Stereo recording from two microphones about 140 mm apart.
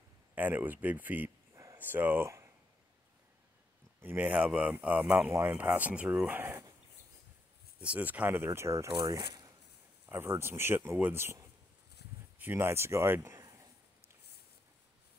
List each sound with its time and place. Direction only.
0.3 s speech: 15° right (ahead or behind)
4.0 s speech: 15° right (ahead or behind)
7.8 s speech: 10° right (ahead or behind)
8.9 s speech: 30° right (ahead or behind)
10.0 s speech: 15° right (ahead or behind)